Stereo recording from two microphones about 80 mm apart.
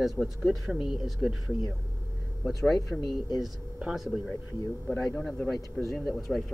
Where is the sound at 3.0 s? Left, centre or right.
Left.